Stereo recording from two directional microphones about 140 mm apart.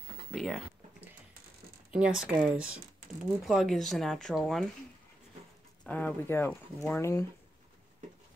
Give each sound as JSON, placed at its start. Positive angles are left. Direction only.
{"t": 0.3, "sound": "speech", "side_deg": 0}
{"t": 1.9, "sound": "speech", "side_deg": -5}
{"t": 5.9, "sound": "speech", "side_deg": 10}